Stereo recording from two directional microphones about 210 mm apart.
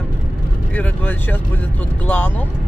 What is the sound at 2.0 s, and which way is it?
Speech, 10° left (ahead or behind).